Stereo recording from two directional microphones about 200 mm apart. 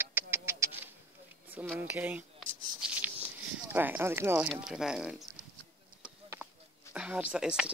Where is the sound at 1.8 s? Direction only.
10° right (ahead or behind).